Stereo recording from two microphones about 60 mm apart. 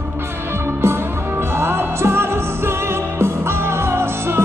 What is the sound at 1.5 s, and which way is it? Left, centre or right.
Music, right.